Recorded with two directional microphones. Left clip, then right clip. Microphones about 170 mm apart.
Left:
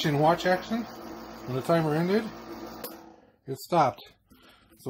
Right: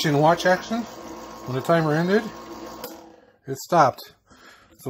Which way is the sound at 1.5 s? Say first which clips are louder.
Right 5 dB; 40° right (ahead or behind).